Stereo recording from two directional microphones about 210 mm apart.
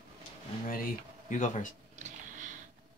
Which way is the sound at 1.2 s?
35° left (ahead or behind).